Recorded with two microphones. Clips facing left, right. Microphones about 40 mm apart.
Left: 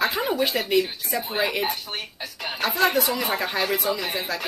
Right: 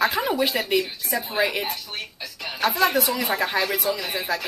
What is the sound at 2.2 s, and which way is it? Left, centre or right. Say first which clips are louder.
Music: left 2 dB; left.